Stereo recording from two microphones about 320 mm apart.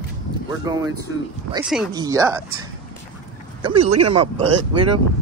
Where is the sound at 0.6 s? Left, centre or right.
Centre.